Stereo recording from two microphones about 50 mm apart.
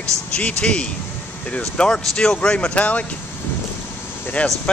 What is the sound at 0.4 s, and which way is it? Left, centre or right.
Speech, left.